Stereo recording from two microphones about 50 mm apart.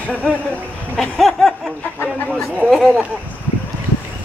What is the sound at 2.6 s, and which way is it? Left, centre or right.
Speech, centre.